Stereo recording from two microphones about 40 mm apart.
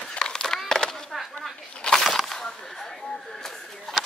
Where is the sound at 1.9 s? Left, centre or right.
Centre.